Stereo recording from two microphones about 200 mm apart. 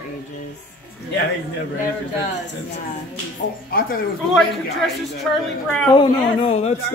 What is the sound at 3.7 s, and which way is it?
Speech, 50° left (ahead or behind).